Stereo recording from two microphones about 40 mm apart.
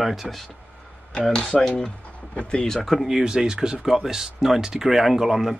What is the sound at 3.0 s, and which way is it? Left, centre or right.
Speech, centre.